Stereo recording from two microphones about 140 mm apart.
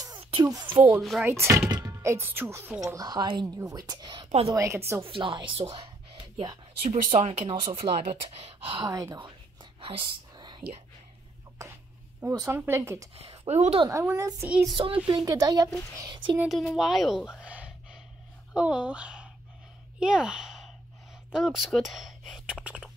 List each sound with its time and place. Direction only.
0.2 s a sound: 40° right (ahead or behind)
0.5 s a woman's voice: 30° right (ahead or behind)
1.2 s speech: 20° right (ahead or behind)
4.5 s speech: 20° right (ahead or behind)
5.0 s speech: 40° right (ahead or behind)
7.0 s speech: 55° right (ahead or behind)
7.4 s a woman's voice: 40° right (ahead or behind)
8.8 s speech: 25° right (ahead or behind)
9.8 s whispering: 40° right (ahead or behind)
12.3 s speech: 25° right (ahead or behind)
13.1 s a woman's voice: 45° right (ahead or behind)
14.0 s a woman's voice: 20° right (ahead or behind)
16.3 s a woman's voice: centre (ahead or behind)